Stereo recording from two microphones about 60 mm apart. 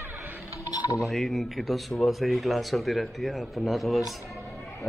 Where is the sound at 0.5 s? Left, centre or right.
Left.